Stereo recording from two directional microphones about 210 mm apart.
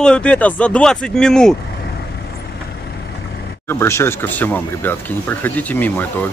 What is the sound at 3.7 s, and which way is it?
Speech, 10° left (ahead or behind).